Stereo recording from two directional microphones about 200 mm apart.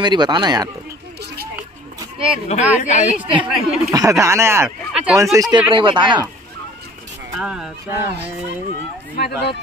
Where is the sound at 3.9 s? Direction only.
15° right (ahead or behind).